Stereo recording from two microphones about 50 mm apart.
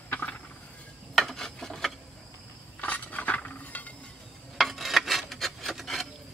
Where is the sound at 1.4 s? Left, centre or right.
Centre.